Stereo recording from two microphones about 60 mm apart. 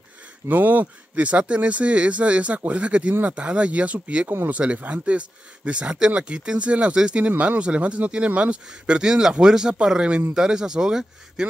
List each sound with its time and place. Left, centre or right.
0.5 s speech: right; by 11.4 s centre